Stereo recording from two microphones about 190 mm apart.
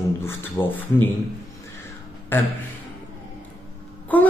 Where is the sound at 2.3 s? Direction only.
10° left (ahead or behind).